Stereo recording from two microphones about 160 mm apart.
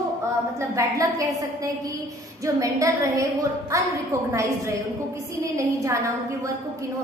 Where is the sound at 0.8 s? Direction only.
20° right (ahead or behind).